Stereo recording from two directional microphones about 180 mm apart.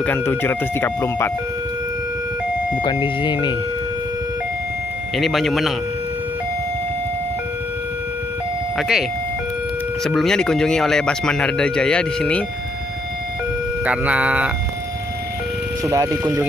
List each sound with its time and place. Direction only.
0.0 s speech: 10° left (ahead or behind)
2.8 s speech: 25° left (ahead or behind)
5.1 s speech: centre (ahead or behind)
8.7 s speech: centre (ahead or behind)
10.0 s speech: centre (ahead or behind)
13.8 s speech: 10° right (ahead or behind)
15.8 s speech: 20° right (ahead or behind)